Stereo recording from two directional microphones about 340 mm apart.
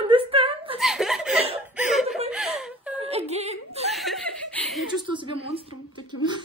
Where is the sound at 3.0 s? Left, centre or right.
Centre.